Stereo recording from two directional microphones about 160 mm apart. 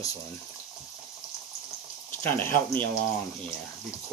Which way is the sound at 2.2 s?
10° left (ahead or behind).